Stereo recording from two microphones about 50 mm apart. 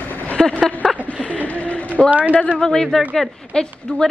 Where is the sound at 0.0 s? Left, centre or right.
Left.